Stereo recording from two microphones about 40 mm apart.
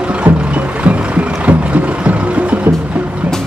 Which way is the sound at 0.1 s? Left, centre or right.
Right.